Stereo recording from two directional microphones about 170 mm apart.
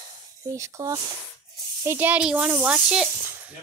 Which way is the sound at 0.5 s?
20° right (ahead or behind).